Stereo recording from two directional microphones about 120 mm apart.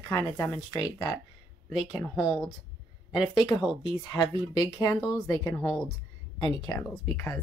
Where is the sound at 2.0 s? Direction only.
35° left (ahead or behind).